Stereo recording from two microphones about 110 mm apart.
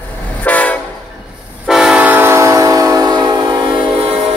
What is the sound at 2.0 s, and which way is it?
Train, 20° right (ahead or behind).